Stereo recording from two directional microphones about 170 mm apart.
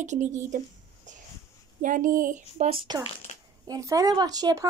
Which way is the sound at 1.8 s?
50° right (ahead or behind).